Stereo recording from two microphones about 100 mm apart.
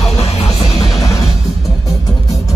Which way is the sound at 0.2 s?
90° left.